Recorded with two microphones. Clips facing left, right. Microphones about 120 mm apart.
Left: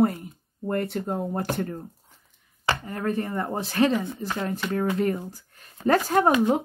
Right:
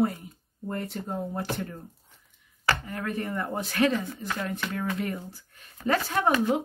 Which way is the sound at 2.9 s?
35° left (ahead or behind).